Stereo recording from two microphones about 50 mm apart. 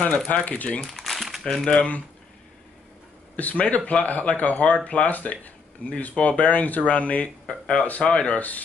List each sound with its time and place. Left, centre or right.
0.3 s speech: left
0.8 s crumpling: centre
1.4 s speech: centre
1.7 s speech: left
3.3 s speech: left
7.4 s speech: centre
7.8 s speech: left
8.1 s speech: centre
8.4 s speech: left